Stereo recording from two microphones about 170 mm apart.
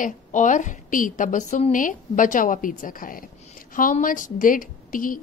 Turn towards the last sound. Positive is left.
turn(degrees=55)  # may be behind; listen again after turning